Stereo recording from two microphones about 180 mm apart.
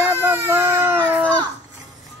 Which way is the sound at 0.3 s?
10° right (ahead or behind).